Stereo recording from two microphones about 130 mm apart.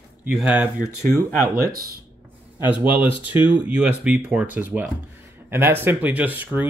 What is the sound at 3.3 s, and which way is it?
Speech, 10° right (ahead or behind).